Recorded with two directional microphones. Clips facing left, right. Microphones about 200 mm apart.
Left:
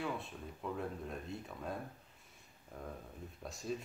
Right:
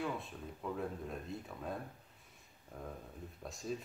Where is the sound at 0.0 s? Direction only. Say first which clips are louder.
Right 1 dB; centre (ahead or behind).